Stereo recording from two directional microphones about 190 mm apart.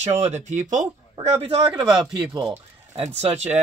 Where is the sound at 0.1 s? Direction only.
35° right (ahead or behind).